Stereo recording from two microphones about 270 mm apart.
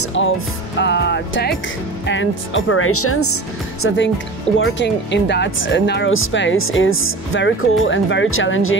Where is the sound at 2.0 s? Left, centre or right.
Left.